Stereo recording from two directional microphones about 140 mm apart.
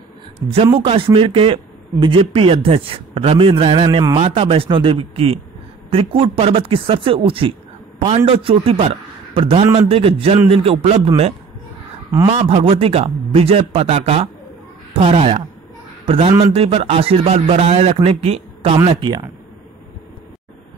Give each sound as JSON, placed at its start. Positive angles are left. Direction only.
{"t": 0.4, "sound": "a man's voice", "side_deg": -30}
{"t": 0.7, "sound": "a man's voice", "side_deg": -40}
{"t": 4.2, "sound": "a man's voice", "side_deg": -40}
{"t": 12.3, "sound": "a man's voice", "side_deg": -45}
{"t": 18.9, "sound": "a man's voice", "side_deg": -35}